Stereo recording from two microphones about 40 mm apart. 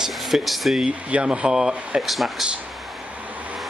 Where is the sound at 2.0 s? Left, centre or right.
Centre.